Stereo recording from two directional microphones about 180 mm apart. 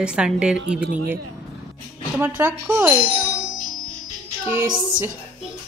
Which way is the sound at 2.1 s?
10° right (ahead or behind).